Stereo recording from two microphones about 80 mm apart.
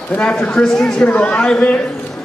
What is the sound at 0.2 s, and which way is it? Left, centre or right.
A man's voice, centre.